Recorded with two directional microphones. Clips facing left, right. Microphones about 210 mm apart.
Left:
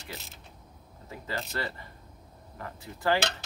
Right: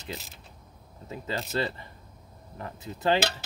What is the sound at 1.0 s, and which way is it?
Speech, 20° right (ahead or behind).